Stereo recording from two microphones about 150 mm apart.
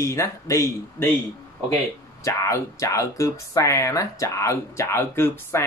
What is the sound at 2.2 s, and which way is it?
Speech, 20° left (ahead or behind).